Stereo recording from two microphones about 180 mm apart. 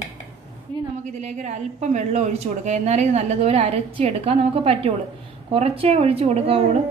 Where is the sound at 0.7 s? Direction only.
25° right (ahead or behind).